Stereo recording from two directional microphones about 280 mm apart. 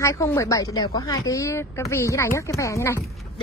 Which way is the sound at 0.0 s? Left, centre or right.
Centre.